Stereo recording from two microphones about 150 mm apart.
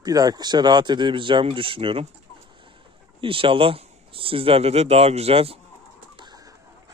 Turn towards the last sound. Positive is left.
turn(degrees=-40)  # may be behind; listen again after turning